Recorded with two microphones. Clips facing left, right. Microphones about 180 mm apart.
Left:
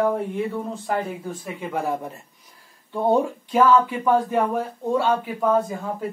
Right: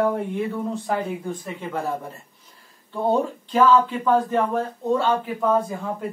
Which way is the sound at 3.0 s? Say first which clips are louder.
Left 2 dB; 10° left (ahead or behind).